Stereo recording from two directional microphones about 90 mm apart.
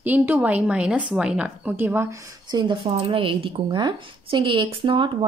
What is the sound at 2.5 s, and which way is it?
Speech, 65° right (ahead or behind).